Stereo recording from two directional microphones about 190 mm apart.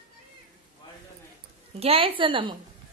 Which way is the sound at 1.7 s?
30° right (ahead or behind).